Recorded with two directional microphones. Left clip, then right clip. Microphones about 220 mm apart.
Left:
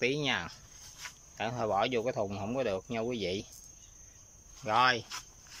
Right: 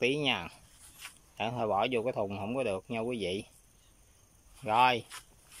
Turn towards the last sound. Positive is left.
turn(degrees=-10)  # may be behind; listen again after turning